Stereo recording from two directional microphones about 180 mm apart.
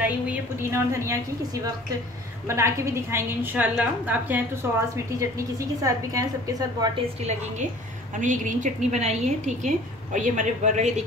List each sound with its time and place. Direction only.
0.0 s a woman's voice: 10° right (ahead or behind)
8.2 s a woman's voice: 45° right (ahead or behind)